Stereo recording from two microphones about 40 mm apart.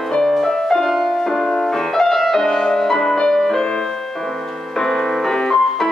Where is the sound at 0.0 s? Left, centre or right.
Centre.